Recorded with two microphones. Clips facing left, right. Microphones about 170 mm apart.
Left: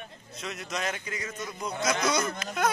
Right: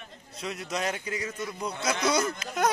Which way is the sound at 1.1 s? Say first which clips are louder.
Right 3 dB; 30° right (ahead or behind).